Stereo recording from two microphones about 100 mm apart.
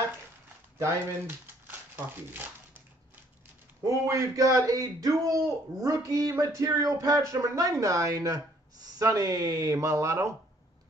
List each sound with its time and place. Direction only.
0.7 s speech: 20° right (ahead or behind)
3.8 s speech: 35° right (ahead or behind)